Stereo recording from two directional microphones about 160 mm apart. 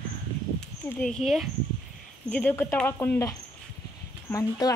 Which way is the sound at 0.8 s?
5° left (ahead or behind).